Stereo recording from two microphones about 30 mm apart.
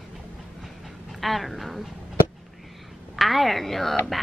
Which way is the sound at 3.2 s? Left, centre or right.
Centre.